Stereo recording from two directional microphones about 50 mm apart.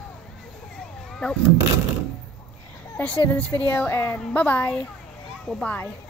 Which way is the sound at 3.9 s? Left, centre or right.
Left.